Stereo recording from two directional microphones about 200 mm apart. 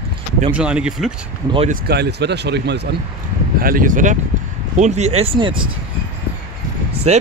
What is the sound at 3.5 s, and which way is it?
Speech, 45° right (ahead or behind).